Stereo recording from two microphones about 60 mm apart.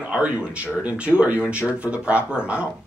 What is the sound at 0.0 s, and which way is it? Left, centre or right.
Speech, centre.